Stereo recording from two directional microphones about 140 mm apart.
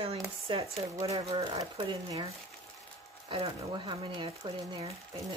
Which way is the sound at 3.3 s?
35° right (ahead or behind).